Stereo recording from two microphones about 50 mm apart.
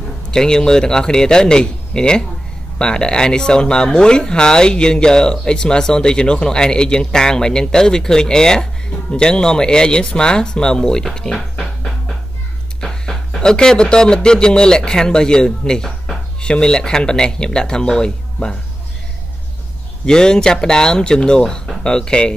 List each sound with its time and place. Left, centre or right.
0.3 s speech: centre
12.8 s speech: centre
20.1 s speech: centre